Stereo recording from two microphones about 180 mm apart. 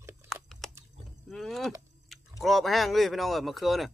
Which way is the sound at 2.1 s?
Centre (ahead or behind).